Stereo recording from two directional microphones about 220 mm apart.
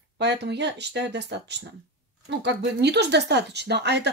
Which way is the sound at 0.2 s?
50° right (ahead or behind).